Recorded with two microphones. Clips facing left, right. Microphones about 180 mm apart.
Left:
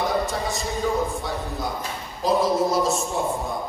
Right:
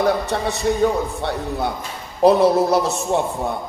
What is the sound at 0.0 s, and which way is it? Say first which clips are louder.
Speech: right 5 dB; 65° right (ahead or behind).